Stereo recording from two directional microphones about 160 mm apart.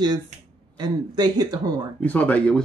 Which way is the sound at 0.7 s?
25° right (ahead or behind).